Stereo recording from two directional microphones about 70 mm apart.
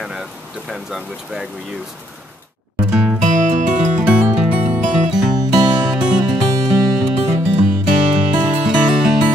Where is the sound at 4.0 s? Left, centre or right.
Centre.